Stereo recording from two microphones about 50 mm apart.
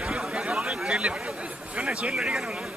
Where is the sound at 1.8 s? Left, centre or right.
Right.